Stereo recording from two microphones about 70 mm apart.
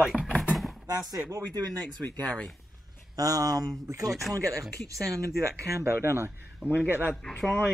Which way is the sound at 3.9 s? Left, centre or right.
Right.